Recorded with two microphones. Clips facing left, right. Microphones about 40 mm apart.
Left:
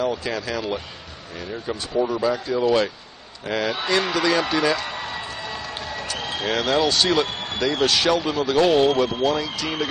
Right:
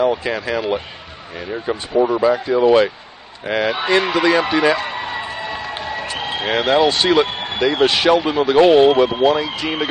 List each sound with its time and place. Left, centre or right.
0.0 s a man's voice: right